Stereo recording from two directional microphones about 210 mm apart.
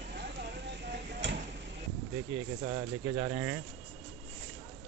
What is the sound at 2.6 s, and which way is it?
Speech, 20° right (ahead or behind).